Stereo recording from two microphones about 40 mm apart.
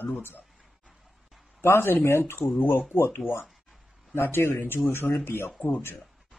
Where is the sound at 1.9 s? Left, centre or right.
Left.